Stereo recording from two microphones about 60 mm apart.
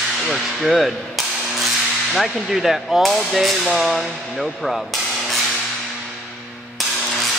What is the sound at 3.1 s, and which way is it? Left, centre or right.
Speech, centre.